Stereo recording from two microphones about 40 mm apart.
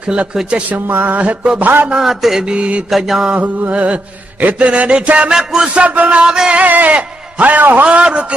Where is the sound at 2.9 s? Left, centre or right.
Centre.